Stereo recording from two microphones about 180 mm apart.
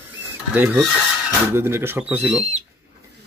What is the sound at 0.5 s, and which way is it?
Speech, 10° right (ahead or behind).